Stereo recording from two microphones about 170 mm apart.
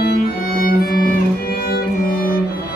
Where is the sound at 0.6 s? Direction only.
60° left (ahead or behind).